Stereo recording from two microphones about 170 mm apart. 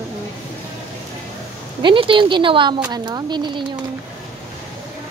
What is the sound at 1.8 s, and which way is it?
A woman's voice, 30° right (ahead or behind).